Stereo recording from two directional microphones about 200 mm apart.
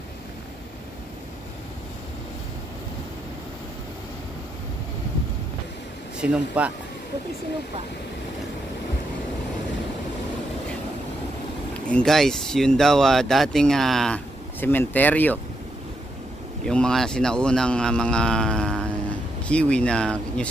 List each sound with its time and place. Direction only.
6.2 s speech: 5° right (ahead or behind)
11.9 s speech: centre (ahead or behind)
16.6 s speech: 5° left (ahead or behind)